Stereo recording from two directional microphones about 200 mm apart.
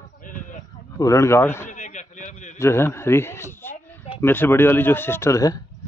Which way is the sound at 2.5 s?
15° left (ahead or behind).